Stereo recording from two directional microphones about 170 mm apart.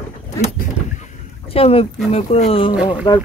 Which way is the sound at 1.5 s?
35° left (ahead or behind).